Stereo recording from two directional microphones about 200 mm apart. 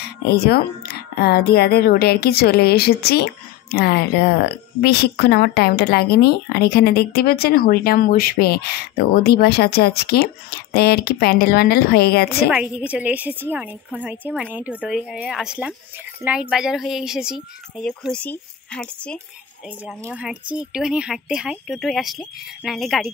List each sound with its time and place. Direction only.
0.3 s speech: 50° left (ahead or behind)
12.4 s a woman's voice: 5° right (ahead or behind)
20.0 s speech: 10° right (ahead or behind)